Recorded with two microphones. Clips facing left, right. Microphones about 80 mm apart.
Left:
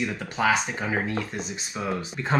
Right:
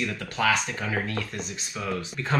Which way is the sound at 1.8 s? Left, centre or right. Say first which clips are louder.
Left 1 dB; left.